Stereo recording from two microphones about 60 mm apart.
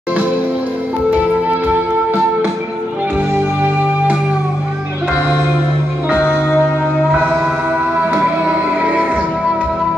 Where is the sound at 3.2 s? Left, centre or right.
Right.